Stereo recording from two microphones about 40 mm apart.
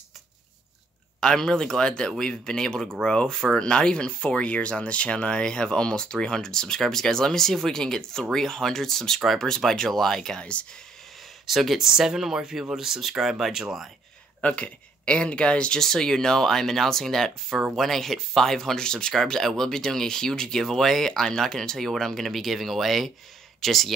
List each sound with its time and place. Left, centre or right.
1.2 s speech: centre
10.4 s speech: left
11.4 s speech: centre
14.4 s speech: left
15.8 s speech: centre